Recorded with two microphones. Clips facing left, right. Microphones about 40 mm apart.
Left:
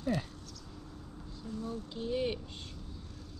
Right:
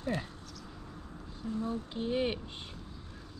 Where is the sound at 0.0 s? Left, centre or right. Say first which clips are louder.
Left 1 dB; right.